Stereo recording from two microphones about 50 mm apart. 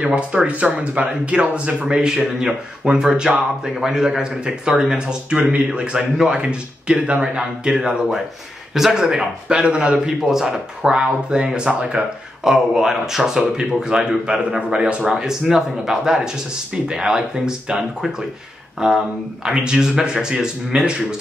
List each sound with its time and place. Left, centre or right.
0.0 s speech: centre
0.5 s speech: right
10.2 s speech: centre